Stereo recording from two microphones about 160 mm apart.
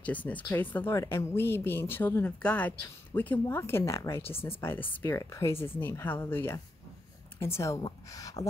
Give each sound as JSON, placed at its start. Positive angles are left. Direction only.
{"t": 0.0, "sound": "a woman's voice", "side_deg": 10}